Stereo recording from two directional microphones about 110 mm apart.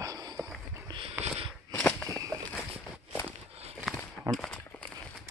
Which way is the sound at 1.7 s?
15° left (ahead or behind).